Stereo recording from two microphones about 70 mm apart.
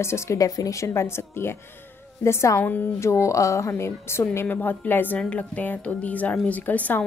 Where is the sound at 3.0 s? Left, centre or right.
Left.